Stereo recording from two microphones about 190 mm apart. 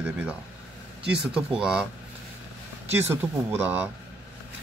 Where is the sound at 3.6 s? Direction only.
10° right (ahead or behind).